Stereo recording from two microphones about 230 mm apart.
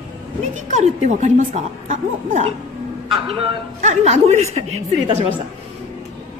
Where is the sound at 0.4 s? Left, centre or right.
Right.